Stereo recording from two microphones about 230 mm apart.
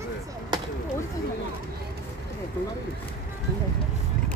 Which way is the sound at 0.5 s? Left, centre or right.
Centre.